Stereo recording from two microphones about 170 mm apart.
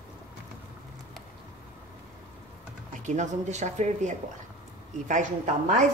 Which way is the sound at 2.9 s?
45° right (ahead or behind).